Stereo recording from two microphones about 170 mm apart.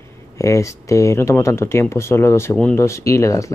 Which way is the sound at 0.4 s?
20° left (ahead or behind).